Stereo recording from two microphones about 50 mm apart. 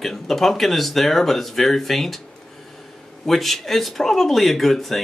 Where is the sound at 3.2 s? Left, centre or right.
Centre.